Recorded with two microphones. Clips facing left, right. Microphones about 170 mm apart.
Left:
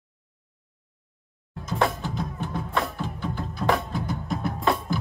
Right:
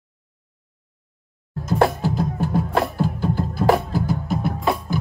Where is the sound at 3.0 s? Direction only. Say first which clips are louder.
Right 9 dB; 35° right (ahead or behind).